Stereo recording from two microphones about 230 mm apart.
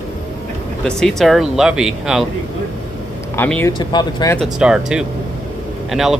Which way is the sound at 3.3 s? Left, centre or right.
Centre.